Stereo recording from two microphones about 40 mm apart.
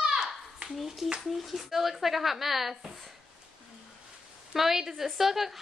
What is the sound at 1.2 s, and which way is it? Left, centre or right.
Speech, centre.